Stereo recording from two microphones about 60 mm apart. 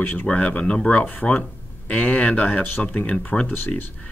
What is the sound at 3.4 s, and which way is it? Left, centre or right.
Speech, left.